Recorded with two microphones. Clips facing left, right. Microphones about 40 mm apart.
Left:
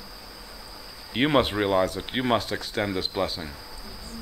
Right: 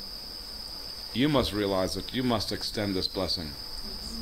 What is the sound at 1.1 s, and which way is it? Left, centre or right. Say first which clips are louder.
Speech: left 4 dB; left.